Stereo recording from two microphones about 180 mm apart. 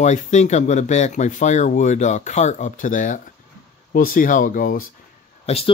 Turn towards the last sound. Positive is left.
turn(degrees=30)  # may be behind; listen again after turning